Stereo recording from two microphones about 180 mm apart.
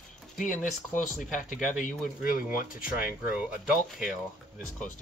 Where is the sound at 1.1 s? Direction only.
45° left (ahead or behind).